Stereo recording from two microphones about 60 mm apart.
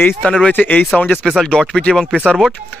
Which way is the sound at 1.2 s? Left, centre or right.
Centre.